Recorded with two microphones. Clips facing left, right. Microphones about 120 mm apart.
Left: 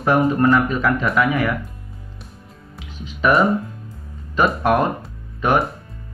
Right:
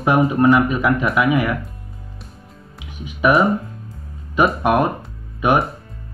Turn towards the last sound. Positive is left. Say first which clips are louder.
# right 1 dB
turn(degrees=-15)  # may be behind; listen again after turning